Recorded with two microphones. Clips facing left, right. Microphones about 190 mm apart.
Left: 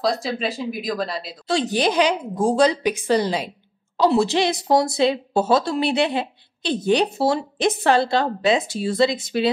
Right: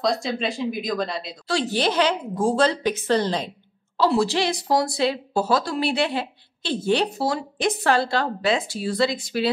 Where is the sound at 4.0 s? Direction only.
20° left (ahead or behind).